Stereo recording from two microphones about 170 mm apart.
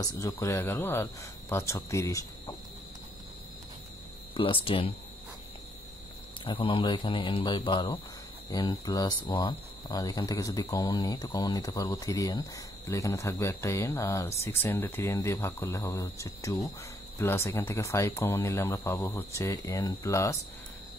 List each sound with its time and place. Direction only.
0.0 s speech: 20° left (ahead or behind)
4.3 s speech: 30° left (ahead or behind)
6.4 s speech: 30° left (ahead or behind)